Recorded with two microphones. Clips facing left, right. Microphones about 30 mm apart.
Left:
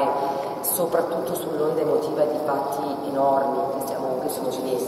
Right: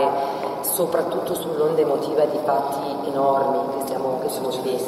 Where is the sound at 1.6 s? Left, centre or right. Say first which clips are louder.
Right 3 dB; right.